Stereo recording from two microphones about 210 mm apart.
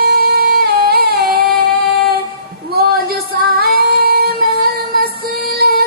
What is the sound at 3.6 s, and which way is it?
Female singing, 45° right (ahead or behind).